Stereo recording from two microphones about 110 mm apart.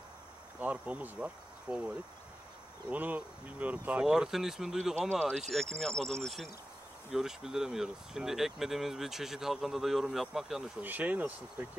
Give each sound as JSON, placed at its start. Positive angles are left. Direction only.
{"t": 0.6, "sound": "speech", "side_deg": -15}
{"t": 2.9, "sound": "speech", "side_deg": -15}
{"t": 10.8, "sound": "speech", "side_deg": -15}